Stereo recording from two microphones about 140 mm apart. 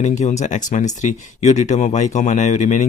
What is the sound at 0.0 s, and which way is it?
Speech, 55° left (ahead or behind).